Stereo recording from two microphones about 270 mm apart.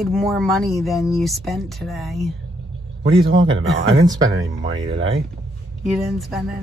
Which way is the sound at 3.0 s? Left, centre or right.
Centre.